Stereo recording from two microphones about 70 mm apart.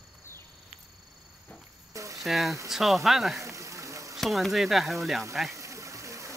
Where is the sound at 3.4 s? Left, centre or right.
Right.